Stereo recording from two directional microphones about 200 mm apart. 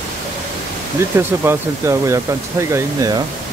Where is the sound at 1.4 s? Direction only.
15° right (ahead or behind).